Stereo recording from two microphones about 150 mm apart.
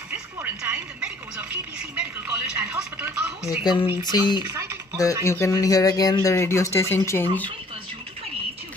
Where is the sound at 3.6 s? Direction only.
30° left (ahead or behind).